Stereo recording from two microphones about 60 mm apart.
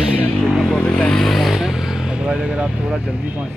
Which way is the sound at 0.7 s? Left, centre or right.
Centre.